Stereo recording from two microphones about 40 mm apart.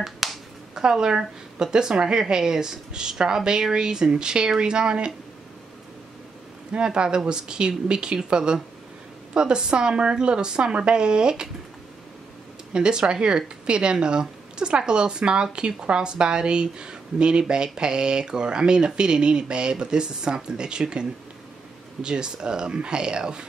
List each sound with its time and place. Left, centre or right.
0.0 s finger snapping: centre
0.8 s speech: centre
6.7 s speech: right
12.7 s speech: right